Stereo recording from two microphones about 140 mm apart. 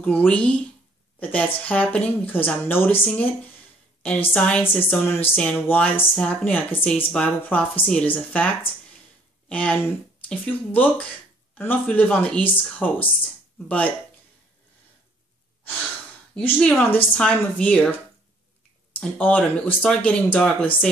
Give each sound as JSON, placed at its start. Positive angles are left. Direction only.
{"t": 0.0, "sound": "a woman's voice", "side_deg": 15}
{"t": 4.3, "sound": "a woman's voice", "side_deg": 10}
{"t": 16.3, "sound": "a woman's voice", "side_deg": 5}
{"t": 18.9, "sound": "a woman's voice", "side_deg": 10}